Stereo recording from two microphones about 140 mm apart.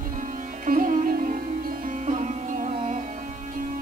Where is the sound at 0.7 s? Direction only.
75° right (ahead or behind).